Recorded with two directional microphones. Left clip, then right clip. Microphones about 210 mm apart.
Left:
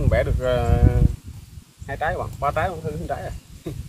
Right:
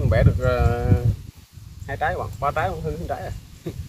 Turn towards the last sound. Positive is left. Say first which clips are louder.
# even
turn(degrees=0)  # may be behind; listen again after turning